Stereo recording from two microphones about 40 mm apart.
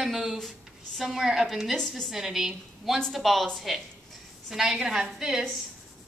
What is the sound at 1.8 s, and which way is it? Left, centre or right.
Speech, centre.